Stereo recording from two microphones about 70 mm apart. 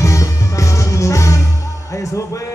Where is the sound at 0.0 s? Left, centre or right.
Left.